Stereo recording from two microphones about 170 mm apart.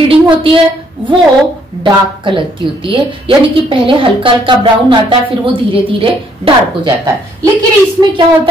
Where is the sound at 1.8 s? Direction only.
30° right (ahead or behind).